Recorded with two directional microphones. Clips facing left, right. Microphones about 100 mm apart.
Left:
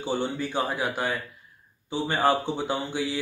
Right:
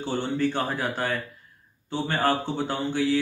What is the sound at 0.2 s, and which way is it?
Speech, 10° left (ahead or behind).